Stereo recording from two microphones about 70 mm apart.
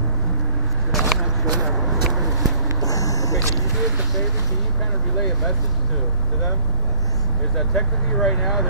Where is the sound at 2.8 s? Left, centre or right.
Left.